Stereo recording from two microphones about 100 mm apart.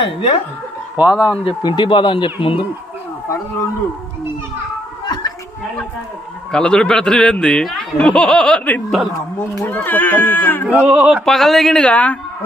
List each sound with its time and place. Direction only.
0.0 s speech: 65° left (ahead or behind)
0.9 s speech: 10° right (ahead or behind)
1.6 s speech: 50° left (ahead or behind)
5.0 s a sound: 45° left (ahead or behind)
6.5 s speech: 10° left (ahead or behind)
10.7 s speech: 10° right (ahead or behind)
11.2 s a woman's voice: 5° left (ahead or behind)